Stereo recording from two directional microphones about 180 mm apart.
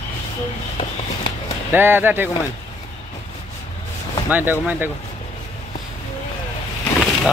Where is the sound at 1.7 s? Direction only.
10° right (ahead or behind).